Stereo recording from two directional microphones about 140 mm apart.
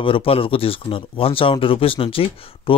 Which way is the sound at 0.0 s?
40° left (ahead or behind).